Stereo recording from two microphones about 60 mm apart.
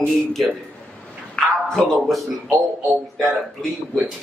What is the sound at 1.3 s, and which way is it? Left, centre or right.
Speech, centre.